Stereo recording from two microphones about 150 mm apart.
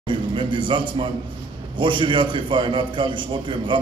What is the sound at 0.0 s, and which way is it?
A man's voice, 35° right (ahead or behind).